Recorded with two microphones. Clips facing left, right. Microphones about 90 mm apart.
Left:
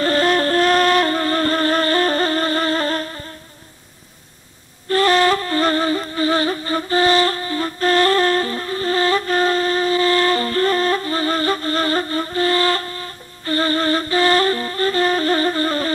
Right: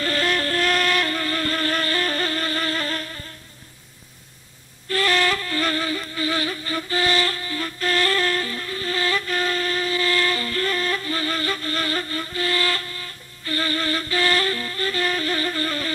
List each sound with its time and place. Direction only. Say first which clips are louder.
0.0 s flute: left 7 dB; 35° left (ahead or behind)
4.8 s music: left 7 dB; 35° left (ahead or behind)